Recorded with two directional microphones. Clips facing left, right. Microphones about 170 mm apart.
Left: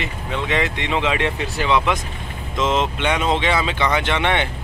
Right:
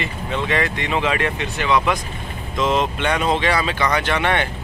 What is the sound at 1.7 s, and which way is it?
Speech, 20° left (ahead or behind).